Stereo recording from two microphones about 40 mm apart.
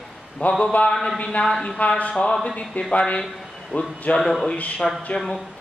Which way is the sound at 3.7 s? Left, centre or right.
Left.